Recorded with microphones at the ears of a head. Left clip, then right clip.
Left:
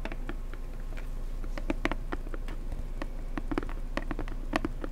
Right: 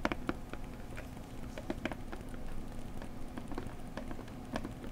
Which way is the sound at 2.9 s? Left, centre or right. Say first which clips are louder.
Left 10 dB; left.